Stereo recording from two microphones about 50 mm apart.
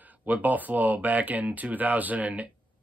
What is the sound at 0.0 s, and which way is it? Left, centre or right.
Speech, right.